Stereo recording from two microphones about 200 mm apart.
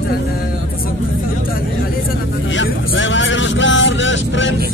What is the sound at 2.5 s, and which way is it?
Vehicle, 70° left (ahead or behind).